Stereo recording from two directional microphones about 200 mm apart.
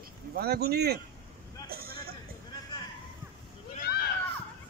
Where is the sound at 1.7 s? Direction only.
50° right (ahead or behind).